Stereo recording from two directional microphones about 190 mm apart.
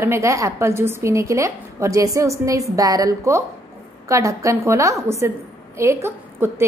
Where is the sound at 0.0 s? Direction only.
15° right (ahead or behind).